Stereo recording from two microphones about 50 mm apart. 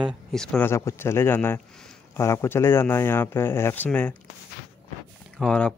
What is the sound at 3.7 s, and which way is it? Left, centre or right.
Speech, left.